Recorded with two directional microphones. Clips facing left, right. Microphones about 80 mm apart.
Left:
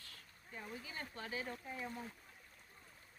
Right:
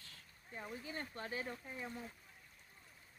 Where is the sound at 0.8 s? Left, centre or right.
Right.